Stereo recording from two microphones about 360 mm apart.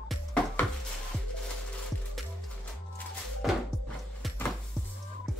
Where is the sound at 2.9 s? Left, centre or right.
Centre.